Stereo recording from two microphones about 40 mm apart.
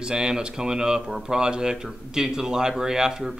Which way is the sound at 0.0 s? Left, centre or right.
Centre.